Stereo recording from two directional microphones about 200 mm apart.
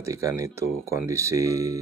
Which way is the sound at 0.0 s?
15° right (ahead or behind).